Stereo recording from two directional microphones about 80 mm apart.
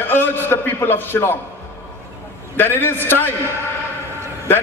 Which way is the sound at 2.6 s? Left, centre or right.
Left.